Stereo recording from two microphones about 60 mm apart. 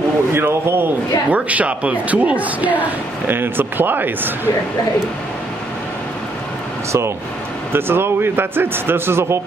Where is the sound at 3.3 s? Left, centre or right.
Right.